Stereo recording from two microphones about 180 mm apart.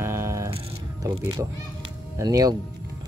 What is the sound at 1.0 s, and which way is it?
Speech, 20° right (ahead or behind).